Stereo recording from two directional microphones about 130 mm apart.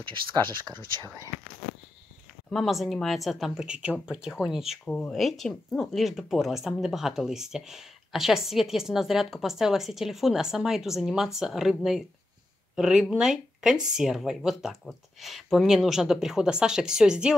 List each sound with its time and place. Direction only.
0.0 s speech: 40° right (ahead or behind)
2.5 s speech: centre (ahead or behind)